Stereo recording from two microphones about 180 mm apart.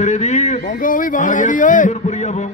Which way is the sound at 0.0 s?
40° left (ahead or behind).